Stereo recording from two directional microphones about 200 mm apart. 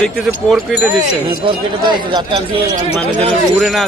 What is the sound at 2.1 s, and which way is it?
Speech, 20° right (ahead or behind).